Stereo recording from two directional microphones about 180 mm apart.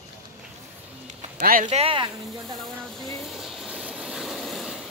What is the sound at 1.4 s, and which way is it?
Speech, 50° right (ahead or behind).